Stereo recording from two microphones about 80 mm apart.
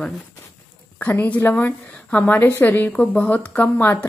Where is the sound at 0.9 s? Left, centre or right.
Left.